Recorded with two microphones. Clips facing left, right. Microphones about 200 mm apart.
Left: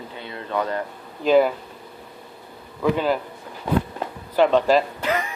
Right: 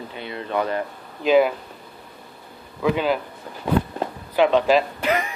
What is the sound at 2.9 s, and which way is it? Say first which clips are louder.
Speech: even; 10° right (ahead or behind).